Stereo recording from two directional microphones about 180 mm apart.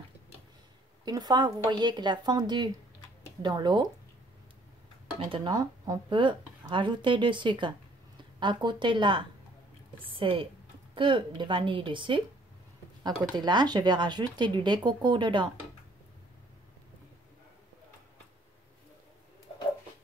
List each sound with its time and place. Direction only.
1.0 s speech: 20° right (ahead or behind)
5.2 s speech: 25° right (ahead or behind)